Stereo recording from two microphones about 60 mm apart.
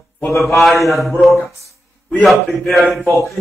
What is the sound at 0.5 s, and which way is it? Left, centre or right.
Speech, centre.